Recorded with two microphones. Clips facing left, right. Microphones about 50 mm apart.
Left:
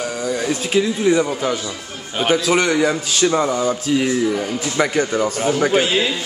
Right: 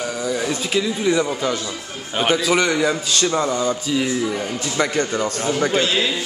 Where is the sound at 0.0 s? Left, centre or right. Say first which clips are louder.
Left 1 dB; centre.